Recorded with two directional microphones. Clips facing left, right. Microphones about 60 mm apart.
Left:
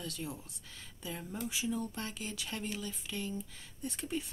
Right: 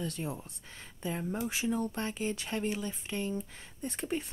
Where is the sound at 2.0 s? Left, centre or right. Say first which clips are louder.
Right 7 dB; right.